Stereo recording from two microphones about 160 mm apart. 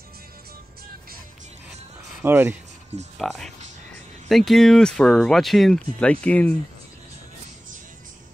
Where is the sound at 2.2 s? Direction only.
15° right (ahead or behind).